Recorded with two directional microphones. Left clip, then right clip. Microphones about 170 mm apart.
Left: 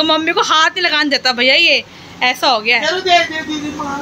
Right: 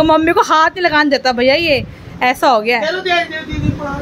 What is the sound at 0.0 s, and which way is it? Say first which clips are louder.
A woman's voice: right 3 dB; 45° right (ahead or behind).